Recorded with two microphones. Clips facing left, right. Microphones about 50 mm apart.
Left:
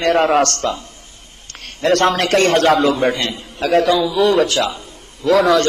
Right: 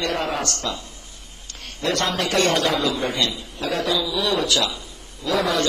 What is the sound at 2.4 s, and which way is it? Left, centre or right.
A man's voice, left.